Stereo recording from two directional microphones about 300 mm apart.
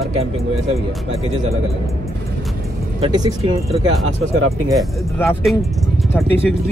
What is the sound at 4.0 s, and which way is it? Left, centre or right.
Speech, right.